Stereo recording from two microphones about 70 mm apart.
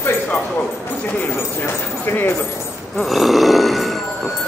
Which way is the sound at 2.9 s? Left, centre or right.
Centre.